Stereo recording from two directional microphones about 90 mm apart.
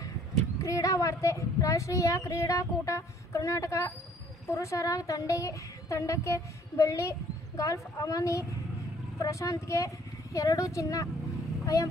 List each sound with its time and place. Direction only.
0.6 s a woman's voice: 40° left (ahead or behind)